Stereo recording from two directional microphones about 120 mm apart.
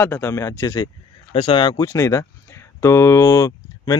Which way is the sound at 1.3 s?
45° left (ahead or behind).